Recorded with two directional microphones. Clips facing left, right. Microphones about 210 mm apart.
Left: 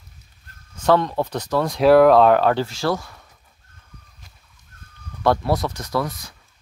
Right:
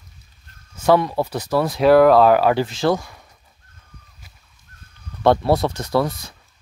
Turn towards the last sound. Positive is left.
turn(degrees=-30)  # may be behind; listen again after turning